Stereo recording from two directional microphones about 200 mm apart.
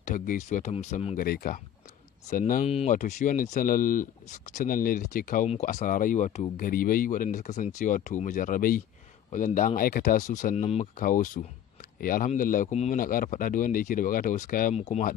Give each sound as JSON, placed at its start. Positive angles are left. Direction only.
{"t": 0.0, "sound": "speech", "side_deg": 40}